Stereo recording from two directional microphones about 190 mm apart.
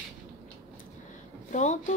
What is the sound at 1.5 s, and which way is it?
Speech, 40° left (ahead or behind).